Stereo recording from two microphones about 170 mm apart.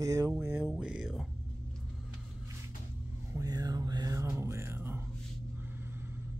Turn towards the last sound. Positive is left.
turn(degrees=-15)  # may be behind; listen again after turning